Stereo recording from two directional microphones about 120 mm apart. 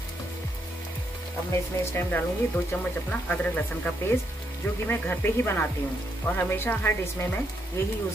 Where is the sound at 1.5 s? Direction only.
20° left (ahead or behind).